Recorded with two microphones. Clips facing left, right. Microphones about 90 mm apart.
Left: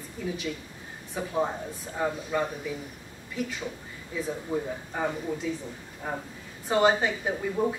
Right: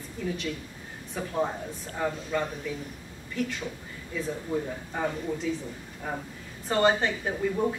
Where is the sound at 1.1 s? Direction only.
5° left (ahead or behind).